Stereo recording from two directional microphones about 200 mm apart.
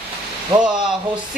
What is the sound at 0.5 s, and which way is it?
Speech, 20° right (ahead or behind).